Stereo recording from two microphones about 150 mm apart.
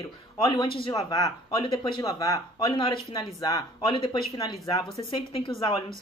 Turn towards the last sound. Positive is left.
turn(degrees=35)  # may be behind; listen again after turning